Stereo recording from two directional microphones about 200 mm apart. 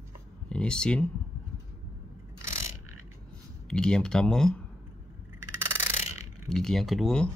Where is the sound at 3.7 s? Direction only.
5° left (ahead or behind).